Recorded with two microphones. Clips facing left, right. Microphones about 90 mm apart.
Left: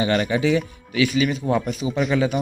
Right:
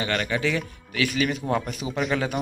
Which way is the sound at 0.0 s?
15° left (ahead or behind).